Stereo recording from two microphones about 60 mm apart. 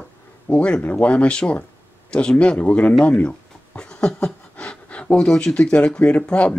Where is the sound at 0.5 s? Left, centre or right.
Centre.